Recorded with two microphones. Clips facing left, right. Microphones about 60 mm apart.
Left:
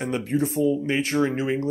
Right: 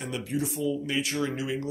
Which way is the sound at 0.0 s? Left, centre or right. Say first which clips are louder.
Left 6 dB; left.